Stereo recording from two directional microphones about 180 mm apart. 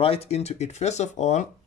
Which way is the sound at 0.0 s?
35° left (ahead or behind).